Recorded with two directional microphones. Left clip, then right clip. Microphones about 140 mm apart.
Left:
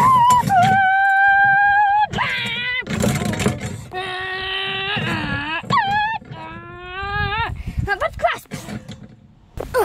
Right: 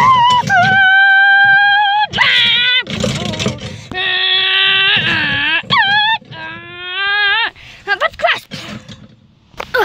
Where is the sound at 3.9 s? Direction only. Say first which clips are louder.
Right 10 dB; 10° left (ahead or behind).